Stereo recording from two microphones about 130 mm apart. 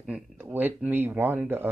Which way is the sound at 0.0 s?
10° right (ahead or behind).